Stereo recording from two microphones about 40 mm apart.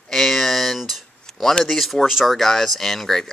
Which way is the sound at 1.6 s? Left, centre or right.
Centre.